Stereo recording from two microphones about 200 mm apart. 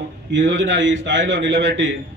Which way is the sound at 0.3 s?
65° right (ahead or behind).